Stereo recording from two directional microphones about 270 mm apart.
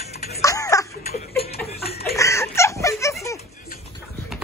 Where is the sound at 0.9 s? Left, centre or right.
Left.